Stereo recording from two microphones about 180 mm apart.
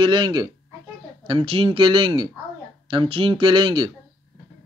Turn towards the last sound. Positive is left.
turn(degrees=-25)  # may be behind; listen again after turning